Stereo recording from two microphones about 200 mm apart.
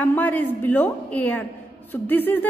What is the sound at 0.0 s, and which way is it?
A woman's voice, 10° left (ahead or behind).